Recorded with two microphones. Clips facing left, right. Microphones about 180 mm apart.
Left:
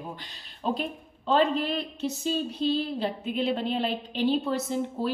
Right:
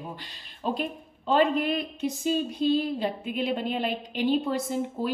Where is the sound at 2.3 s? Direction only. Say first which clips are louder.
Right 3 dB; 50° right (ahead or behind).